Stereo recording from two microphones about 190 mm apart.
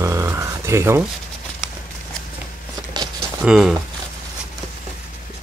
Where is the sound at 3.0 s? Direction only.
25° right (ahead or behind).